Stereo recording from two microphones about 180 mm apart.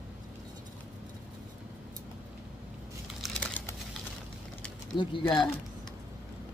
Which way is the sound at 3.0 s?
5° left (ahead or behind).